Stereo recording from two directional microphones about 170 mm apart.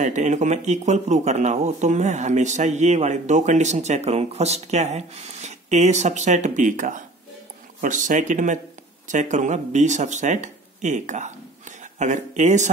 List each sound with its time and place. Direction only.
0.0 s speech: 45° right (ahead or behind)